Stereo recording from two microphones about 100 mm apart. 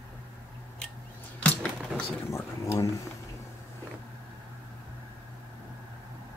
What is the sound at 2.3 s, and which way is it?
Speech, 25° left (ahead or behind).